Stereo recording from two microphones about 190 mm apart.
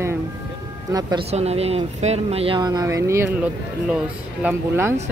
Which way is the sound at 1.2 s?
35° right (ahead or behind).